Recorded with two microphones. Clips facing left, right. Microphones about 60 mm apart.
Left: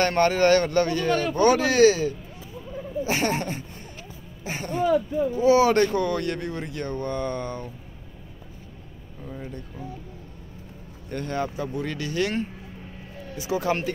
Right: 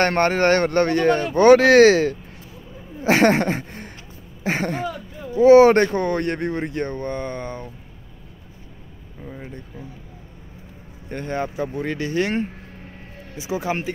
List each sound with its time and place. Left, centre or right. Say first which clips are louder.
0.0 s a man's voice: right 2 dB; right
5.4 s speech: right 8 dB; right
9.2 s speech: right 1 dB; right
11.1 s speech: right 2 dB; right
13.4 s speech: even; centre